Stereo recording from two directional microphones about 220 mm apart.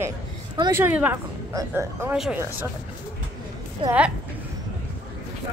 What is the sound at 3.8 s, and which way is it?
Speech, 25° right (ahead or behind).